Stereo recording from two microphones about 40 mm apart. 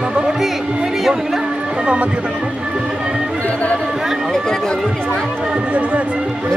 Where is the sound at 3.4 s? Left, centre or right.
Left.